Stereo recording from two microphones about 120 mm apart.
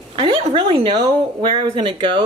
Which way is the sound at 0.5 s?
45° right (ahead or behind).